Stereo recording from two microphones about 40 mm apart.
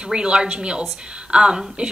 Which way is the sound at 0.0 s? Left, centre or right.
Right.